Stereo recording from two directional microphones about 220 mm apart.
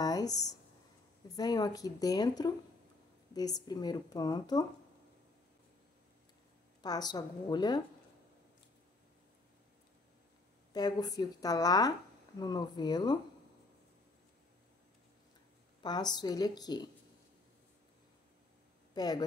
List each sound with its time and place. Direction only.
0.0 s a sound: 15° left (ahead or behind)
1.3 s a woman's voice: 15° left (ahead or behind)
6.8 s a woman's voice: 20° left (ahead or behind)
10.7 s a woman's voice: 20° left (ahead or behind)
15.8 s a woman's voice: 20° left (ahead or behind)
18.9 s a woman's voice: 20° left (ahead or behind)